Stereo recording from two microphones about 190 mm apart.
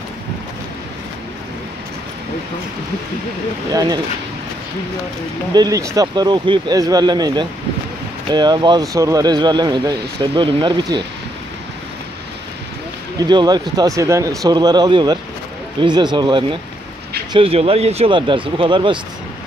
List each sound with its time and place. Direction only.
3.7 s speech: 20° right (ahead or behind)
5.5 s speech: 20° right (ahead or behind)
13.2 s speech: 20° right (ahead or behind)